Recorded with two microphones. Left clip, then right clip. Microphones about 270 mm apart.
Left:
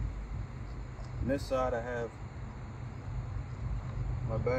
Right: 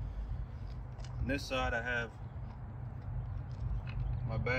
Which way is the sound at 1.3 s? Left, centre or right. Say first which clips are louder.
Left 4 dB; right.